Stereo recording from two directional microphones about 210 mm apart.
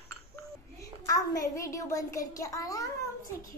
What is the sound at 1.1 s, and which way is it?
A child's voice, 15° left (ahead or behind).